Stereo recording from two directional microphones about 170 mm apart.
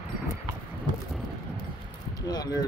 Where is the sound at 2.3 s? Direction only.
20° left (ahead or behind).